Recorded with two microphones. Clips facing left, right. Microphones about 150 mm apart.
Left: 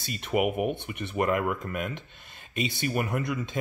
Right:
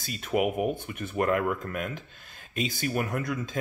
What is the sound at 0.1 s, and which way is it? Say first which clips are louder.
Speech: even; 5° left (ahead or behind).